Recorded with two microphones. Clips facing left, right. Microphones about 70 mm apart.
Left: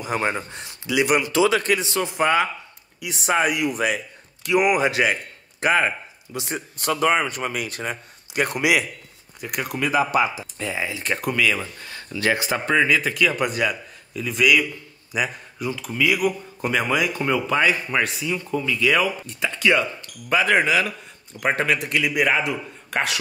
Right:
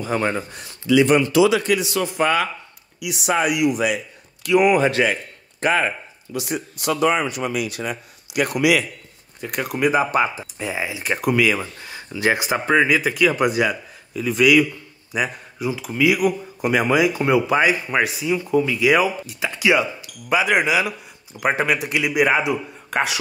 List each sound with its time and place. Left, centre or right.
0.0 s speech: centre
1.3 s speech: left; by 2.5 s centre
3.0 s speech: left
4.4 s speech: centre
6.3 s speech: left
9.4 s speech: centre
9.8 s speech: right
10.1 s speech: right
10.4 s speech: centre
12.1 s speech: right; by 23.1 s centre